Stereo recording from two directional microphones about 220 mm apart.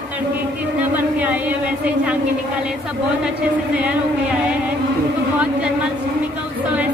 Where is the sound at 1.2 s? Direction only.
5° right (ahead or behind).